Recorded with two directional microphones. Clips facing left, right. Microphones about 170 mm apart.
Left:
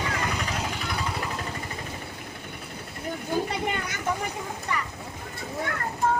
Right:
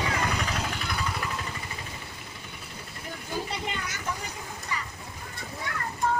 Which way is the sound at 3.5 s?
55° left (ahead or behind).